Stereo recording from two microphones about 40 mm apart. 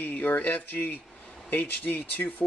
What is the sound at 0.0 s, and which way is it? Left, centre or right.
Speech, left.